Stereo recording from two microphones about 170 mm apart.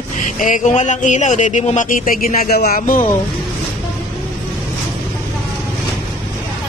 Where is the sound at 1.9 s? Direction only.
55° left (ahead or behind).